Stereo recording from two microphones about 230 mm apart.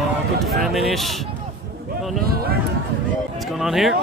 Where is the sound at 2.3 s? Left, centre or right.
Right.